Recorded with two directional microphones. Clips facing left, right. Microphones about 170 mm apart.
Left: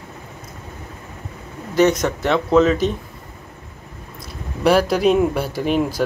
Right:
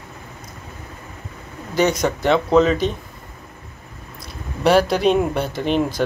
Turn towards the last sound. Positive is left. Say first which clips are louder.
# even
turn(degrees=5)  # may be behind; listen again after turning